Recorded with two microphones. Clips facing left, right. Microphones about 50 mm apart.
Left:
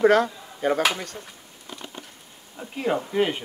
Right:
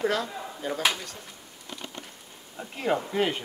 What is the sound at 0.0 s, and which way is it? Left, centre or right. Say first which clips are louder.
Speech: left 9 dB; left.